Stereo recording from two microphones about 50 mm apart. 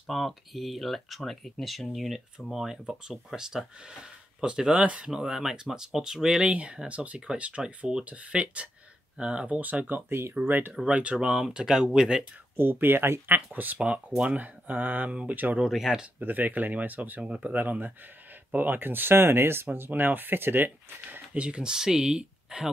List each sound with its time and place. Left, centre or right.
0.1 s speech: centre
6.4 s speech: right
9.6 s speech: right
10.0 s speech: right
10.9 s speech: right
11.1 s speech: centre
12.5 s speech: right
13.5 s speech: right
13.8 s speech: right
15.9 s speech: centre
16.2 s speech: right
17.2 s speech: right
21.3 s speech: right